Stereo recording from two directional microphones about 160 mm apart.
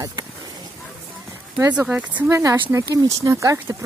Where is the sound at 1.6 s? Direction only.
10° right (ahead or behind).